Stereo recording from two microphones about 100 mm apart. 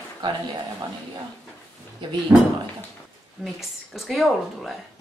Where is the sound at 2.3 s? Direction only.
35° right (ahead or behind).